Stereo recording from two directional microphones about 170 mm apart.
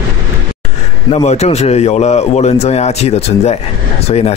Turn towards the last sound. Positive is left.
turn(degrees=35)  # may be behind; listen again after turning